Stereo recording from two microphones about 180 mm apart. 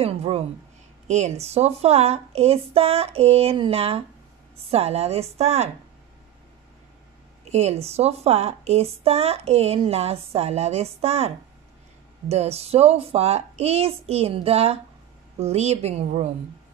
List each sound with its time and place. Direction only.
0.0 s speech: 35° right (ahead or behind)
7.4 s speech: 35° right (ahead or behind)